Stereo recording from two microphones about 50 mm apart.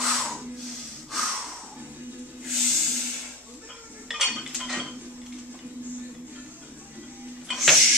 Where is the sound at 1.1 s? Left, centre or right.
Centre.